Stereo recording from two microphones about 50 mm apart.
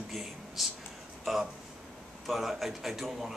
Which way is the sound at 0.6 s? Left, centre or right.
Centre.